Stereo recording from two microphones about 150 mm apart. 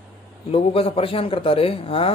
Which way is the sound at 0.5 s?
40° left (ahead or behind).